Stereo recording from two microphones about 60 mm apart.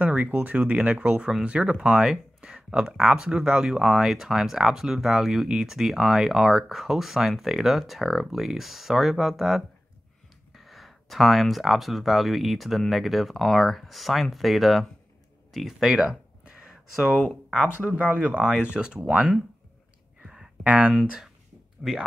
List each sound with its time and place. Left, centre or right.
0.0 s speech: right; by 14.9 s centre
15.5 s a sound: centre
17.8 s speech: right
20.6 s speech: right
21.8 s speech: centre